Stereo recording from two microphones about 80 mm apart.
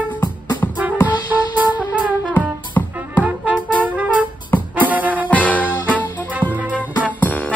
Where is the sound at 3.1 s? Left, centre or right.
Centre.